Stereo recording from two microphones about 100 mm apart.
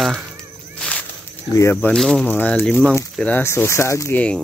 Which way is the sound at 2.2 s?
20° left (ahead or behind).